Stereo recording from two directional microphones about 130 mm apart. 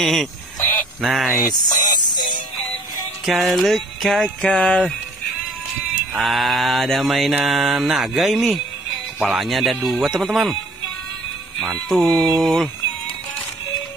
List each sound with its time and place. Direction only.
0.0 s jingle bell: centre (ahead or behind)
1.4 s speech: 30° left (ahead or behind)
3.3 s jingle bell: centre (ahead or behind)
6.1 s jingle bell: centre (ahead or behind)
11.6 s jingle bell: centre (ahead or behind)